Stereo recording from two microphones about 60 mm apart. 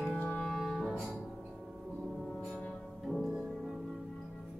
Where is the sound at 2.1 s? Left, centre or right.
Centre.